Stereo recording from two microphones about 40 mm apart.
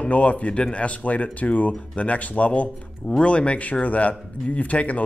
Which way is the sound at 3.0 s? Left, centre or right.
Left.